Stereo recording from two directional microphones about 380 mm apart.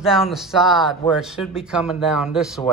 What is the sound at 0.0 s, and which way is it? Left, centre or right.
Speech, centre.